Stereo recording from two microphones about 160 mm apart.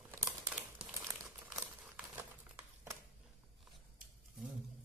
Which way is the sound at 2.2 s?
15° right (ahead or behind).